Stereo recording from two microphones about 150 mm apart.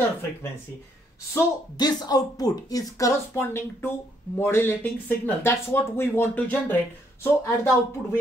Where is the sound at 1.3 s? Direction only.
25° left (ahead or behind).